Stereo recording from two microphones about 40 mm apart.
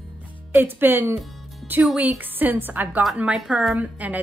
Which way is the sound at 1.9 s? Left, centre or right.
Right.